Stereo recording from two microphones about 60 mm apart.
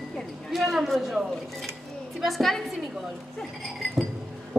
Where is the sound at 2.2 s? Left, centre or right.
Centre.